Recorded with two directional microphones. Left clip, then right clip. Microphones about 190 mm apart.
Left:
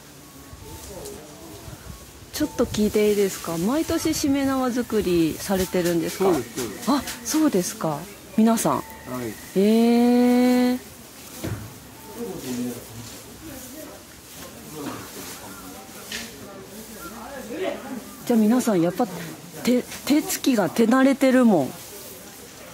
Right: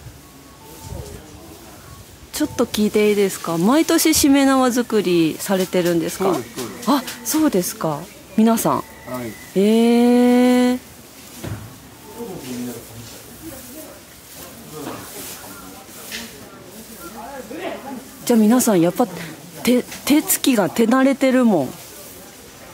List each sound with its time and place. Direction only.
2.3 s speech: 15° right (ahead or behind)
9.6 s mantra: 10° right (ahead or behind)
18.2 s speech: 15° right (ahead or behind)